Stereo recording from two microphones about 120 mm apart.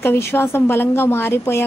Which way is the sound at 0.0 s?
20° left (ahead or behind).